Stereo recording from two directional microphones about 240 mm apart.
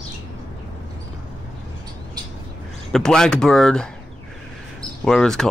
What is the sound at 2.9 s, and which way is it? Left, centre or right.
Speech, centre.